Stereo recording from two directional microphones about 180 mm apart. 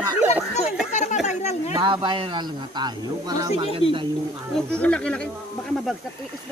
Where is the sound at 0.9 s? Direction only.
40° left (ahead or behind).